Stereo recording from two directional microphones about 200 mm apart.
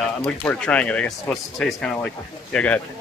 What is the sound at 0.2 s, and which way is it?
Speech, 5° left (ahead or behind).